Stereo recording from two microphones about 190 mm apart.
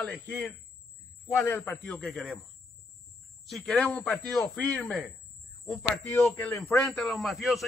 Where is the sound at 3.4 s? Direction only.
Centre (ahead or behind).